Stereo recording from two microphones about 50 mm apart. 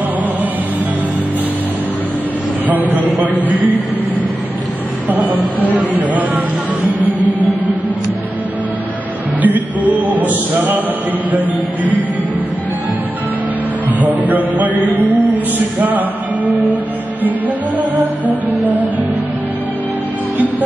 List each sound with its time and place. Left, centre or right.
2.6 s a sound: right
3.4 s music: right
5.0 s music: right
9.4 s music: right
13.9 s a sound: right
17.9 s music: right